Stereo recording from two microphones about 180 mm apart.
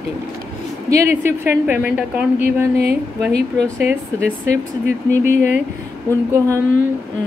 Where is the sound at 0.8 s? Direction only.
15° right (ahead or behind).